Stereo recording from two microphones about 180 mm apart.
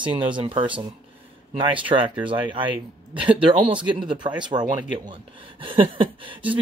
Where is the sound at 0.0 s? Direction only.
25° right (ahead or behind).